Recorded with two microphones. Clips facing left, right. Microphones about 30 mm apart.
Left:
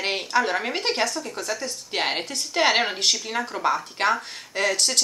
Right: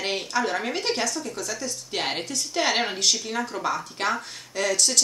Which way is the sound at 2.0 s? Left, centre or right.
Centre.